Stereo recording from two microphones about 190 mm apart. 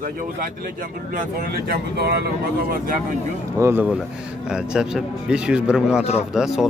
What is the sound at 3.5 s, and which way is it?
A man's voice, 10° right (ahead or behind).